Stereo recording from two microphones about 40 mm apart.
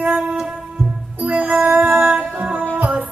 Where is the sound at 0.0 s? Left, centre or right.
Right.